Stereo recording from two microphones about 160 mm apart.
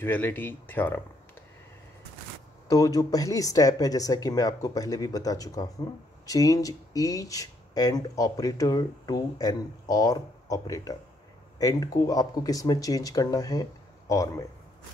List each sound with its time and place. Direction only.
0.0 s speech: 10° left (ahead or behind)
2.7 s speech: 20° left (ahead or behind)